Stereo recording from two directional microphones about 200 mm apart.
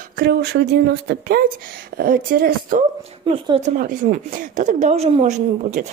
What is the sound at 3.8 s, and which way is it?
Speech, 45° right (ahead or behind).